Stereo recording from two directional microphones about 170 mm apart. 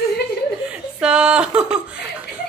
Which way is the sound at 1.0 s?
5° right (ahead or behind).